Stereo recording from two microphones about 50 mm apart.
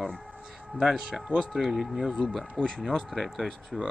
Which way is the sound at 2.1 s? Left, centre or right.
Centre.